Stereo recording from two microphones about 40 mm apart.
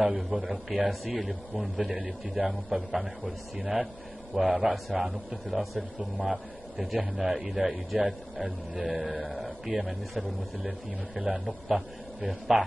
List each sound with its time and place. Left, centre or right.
0.0 s a man's voice: centre